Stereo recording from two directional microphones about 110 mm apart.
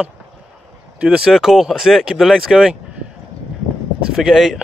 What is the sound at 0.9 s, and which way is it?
Speech, 10° right (ahead or behind).